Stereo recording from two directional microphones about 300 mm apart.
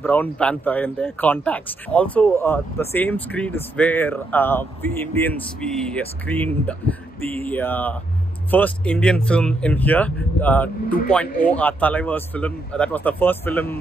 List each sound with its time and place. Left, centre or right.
0.0 s speech: centre